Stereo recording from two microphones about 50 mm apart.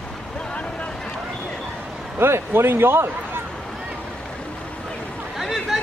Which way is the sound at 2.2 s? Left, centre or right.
Right.